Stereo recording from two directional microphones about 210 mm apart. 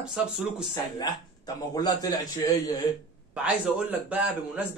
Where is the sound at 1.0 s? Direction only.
20° left (ahead or behind).